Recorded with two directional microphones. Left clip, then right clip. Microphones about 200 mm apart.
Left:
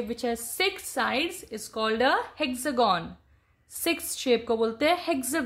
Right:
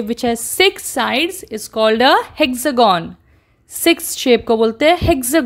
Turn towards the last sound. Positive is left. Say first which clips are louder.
# right 13 dB
turn(degrees=-40)  # may be behind; listen again after turning